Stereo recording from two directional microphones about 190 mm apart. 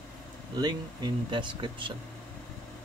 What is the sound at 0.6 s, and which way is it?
Speech, 20° right (ahead or behind).